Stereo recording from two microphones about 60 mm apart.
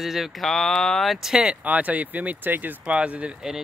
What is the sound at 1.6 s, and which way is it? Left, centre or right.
Speech, right.